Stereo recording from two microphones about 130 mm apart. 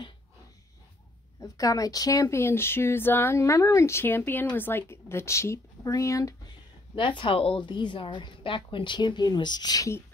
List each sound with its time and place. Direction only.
1.4 s speech: 25° left (ahead or behind)
7.0 s a woman's voice: 40° left (ahead or behind); by 10.0 s 25° left (ahead or behind)